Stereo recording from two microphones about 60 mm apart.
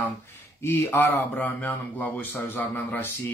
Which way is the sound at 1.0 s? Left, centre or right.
Left.